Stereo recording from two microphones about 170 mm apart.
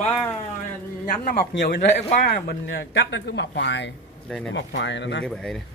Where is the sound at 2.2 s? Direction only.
70° left (ahead or behind); by 3.9 s 90° left.